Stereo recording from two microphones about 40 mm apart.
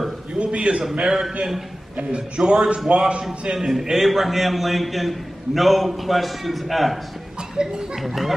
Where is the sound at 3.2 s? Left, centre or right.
Centre.